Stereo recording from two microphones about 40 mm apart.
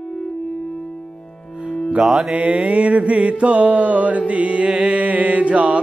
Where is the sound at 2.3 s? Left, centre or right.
Right.